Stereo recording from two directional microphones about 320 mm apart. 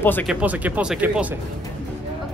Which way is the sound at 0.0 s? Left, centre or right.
Centre.